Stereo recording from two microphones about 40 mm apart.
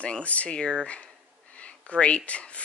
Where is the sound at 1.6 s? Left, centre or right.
Left.